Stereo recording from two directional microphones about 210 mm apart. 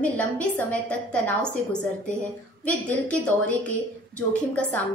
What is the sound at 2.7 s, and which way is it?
A woman's voice, 5° left (ahead or behind).